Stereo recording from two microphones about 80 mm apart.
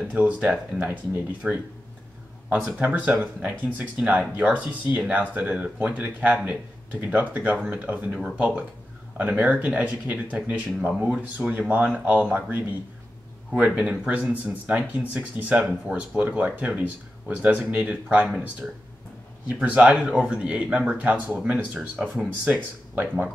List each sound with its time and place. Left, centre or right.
0.0 s speech: centre
22.5 s speech: right